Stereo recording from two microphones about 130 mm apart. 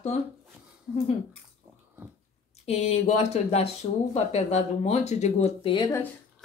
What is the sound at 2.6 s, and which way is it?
Speech, 60° left (ahead or behind).